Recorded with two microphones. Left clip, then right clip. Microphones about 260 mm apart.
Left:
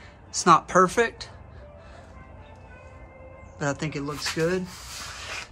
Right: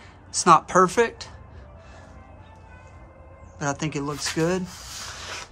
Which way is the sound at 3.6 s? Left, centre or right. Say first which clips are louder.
Right 1 dB; centre.